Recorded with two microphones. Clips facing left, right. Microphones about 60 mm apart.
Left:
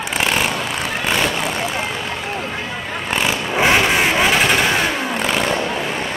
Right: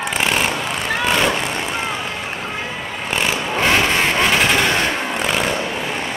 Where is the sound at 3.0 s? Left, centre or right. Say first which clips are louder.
Even; centre.